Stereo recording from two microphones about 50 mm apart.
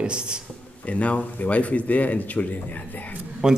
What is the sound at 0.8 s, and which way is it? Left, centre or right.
Speech, left.